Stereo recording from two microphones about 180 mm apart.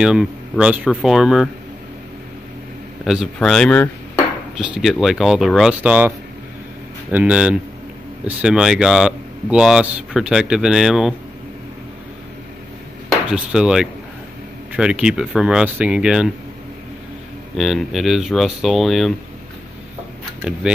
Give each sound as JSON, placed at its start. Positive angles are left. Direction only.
{"t": 0.0, "sound": "speech", "side_deg": -5}
{"t": 3.3, "sound": "speech", "side_deg": 5}
{"t": 13.3, "sound": "speech", "side_deg": -5}
{"t": 17.6, "sound": "speech", "side_deg": 0}
{"t": 20.6, "sound": "speech", "side_deg": -5}